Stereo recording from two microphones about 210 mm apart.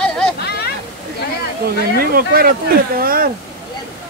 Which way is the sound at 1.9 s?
45° right (ahead or behind).